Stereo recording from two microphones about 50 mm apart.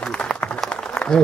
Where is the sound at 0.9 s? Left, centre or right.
Centre.